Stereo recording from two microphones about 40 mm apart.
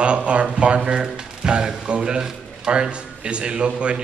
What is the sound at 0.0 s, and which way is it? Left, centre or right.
A man's voice, right.